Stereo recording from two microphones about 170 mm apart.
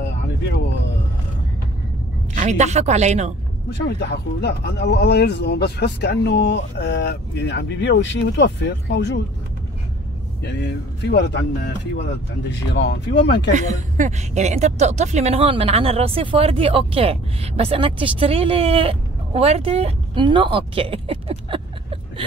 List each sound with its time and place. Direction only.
2.3 s speech: 45° right (ahead or behind)
3.7 s speech: 80° left
10.4 s speech: 90° left
13.5 s speech: 45° right (ahead or behind)